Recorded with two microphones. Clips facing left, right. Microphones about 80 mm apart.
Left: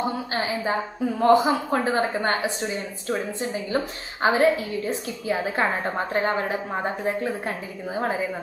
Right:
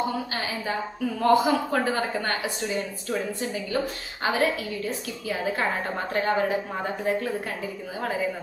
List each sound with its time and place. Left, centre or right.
0.3 s a woman's voice: left